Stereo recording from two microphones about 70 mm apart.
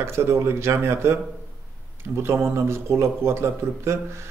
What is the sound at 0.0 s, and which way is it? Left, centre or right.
A man's voice, right.